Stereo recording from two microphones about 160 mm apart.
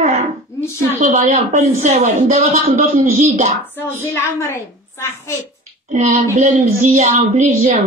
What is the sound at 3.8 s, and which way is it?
A woman's voice, 15° left (ahead or behind).